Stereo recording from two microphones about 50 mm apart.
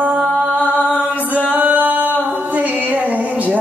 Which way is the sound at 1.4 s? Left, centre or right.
Right.